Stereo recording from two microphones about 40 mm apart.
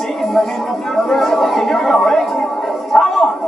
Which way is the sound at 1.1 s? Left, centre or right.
Centre.